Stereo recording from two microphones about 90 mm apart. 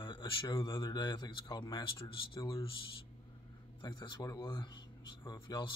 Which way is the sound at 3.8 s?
55° left (ahead or behind).